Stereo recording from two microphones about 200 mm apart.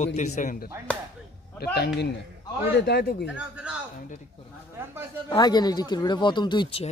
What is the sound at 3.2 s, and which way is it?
Speech, 5° right (ahead or behind).